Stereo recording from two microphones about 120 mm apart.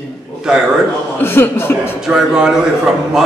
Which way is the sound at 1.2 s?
20° left (ahead or behind).